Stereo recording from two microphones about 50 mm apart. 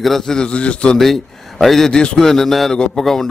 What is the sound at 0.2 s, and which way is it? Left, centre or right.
Speech, centre.